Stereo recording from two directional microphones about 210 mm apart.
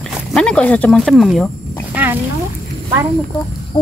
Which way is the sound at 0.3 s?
5° left (ahead or behind).